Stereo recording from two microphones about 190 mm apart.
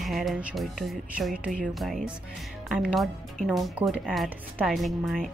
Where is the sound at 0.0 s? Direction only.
Centre (ahead or behind).